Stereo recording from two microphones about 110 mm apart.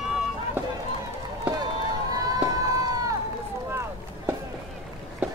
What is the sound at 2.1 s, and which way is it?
Run, 30° right (ahead or behind).